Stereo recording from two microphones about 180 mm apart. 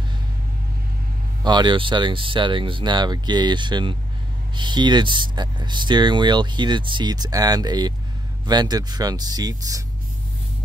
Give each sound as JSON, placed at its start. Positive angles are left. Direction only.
{"t": 1.4, "sound": "speech", "side_deg": -25}